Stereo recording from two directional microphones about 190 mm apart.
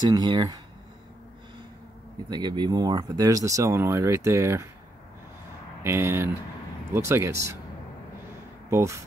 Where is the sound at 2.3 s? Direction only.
25° right (ahead or behind).